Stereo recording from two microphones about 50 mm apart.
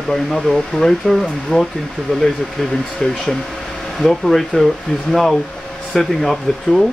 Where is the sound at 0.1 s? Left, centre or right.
Centre.